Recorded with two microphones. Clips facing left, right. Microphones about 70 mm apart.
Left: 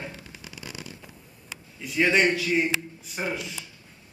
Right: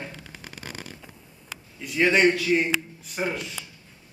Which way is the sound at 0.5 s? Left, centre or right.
Right.